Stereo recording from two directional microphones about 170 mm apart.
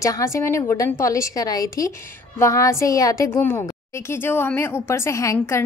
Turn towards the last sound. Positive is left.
turn(degrees=15)  # may be behind; listen again after turning